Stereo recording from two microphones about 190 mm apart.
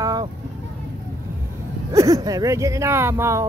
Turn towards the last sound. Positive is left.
turn(degrees=-15)  # may be behind; listen again after turning